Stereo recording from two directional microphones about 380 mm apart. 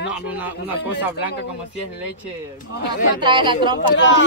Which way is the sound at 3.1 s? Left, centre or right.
Centre.